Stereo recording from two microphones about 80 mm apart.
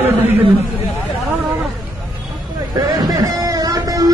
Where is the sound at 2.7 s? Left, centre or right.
Right.